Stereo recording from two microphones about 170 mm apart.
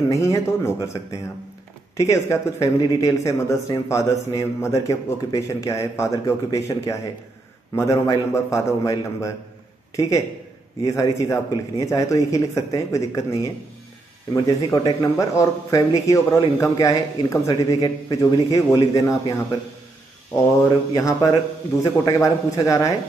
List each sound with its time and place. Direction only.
0.2 s speech: 20° left (ahead or behind)
2.0 s speech: 20° left (ahead or behind)
20.9 s speech: 20° left (ahead or behind)